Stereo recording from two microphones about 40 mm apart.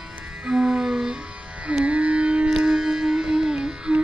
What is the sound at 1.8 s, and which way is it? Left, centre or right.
Music, right.